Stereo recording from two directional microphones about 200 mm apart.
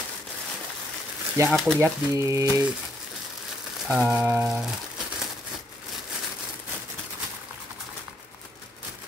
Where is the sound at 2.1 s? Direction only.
15° right (ahead or behind).